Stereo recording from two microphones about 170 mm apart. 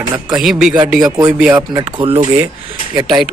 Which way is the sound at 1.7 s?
20° right (ahead or behind).